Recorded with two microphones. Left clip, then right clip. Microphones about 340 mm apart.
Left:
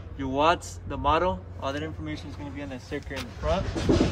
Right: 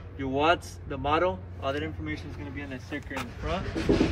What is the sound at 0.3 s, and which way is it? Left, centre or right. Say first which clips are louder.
Speech: left 1 dB; left.